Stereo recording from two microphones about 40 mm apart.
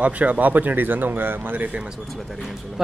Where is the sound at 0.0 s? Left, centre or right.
Right.